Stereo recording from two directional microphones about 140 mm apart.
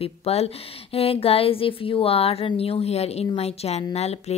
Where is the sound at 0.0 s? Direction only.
45° left (ahead or behind).